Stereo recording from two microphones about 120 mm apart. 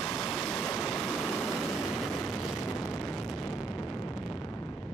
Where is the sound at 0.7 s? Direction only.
5° left (ahead or behind).